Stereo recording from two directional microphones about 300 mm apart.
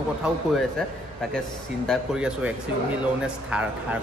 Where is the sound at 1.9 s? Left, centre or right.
Centre.